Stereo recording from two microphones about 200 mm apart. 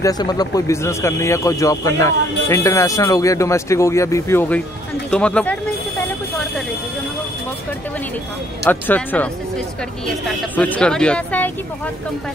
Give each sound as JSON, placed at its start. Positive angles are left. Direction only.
{"t": 0.0, "sound": "a woman's voice", "side_deg": 20}
{"t": 8.6, "sound": "a woman's voice", "side_deg": 10}